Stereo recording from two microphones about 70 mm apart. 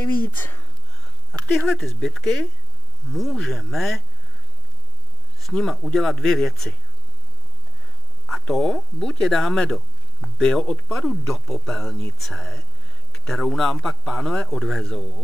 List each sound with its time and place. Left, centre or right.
0.0 s speech: left
1.7 s speech: centre
5.4 s speech: centre
8.3 s speech: centre